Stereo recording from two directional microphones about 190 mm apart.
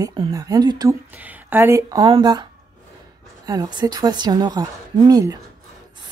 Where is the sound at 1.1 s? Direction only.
10° right (ahead or behind).